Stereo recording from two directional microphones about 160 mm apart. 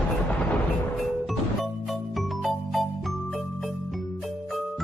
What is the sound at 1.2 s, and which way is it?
Music, centre (ahead or behind).